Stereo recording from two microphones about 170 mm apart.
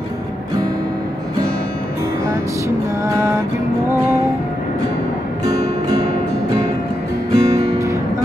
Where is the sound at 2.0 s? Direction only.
15° right (ahead or behind).